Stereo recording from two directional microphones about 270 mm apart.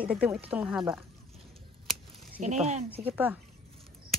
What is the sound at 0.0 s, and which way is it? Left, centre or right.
Speech, centre.